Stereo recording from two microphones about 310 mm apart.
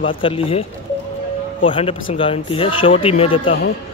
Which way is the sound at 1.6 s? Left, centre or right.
Centre.